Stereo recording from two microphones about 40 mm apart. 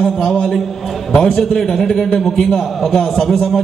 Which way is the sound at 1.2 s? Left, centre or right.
Centre.